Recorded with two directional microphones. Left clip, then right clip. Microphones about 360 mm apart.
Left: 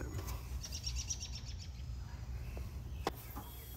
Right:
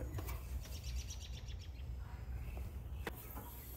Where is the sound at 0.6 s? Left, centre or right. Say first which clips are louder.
Left 8 dB; right.